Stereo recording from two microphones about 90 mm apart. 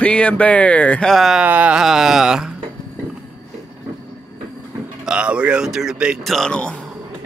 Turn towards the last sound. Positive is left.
turn(degrees=10)  # may be behind; listen again after turning